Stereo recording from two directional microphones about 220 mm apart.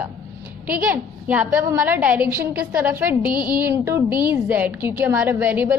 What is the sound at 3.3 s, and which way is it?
Speech, 20° left (ahead or behind).